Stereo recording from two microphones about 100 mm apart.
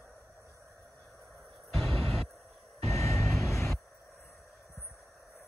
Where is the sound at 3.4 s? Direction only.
30° left (ahead or behind).